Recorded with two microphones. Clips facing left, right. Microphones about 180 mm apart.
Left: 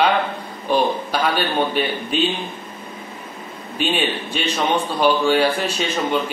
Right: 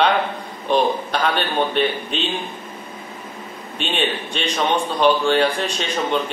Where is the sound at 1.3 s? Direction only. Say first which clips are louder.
Left 1 dB; 5° left (ahead or behind).